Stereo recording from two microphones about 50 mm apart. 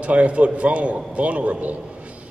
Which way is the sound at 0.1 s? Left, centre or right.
Right.